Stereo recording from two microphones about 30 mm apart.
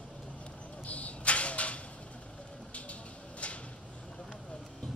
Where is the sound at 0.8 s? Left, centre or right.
Left.